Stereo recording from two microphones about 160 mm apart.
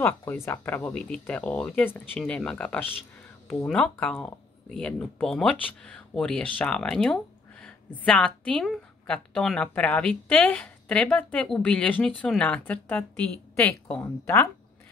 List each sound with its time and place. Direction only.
0.0 s a woman's voice: 15° left (ahead or behind)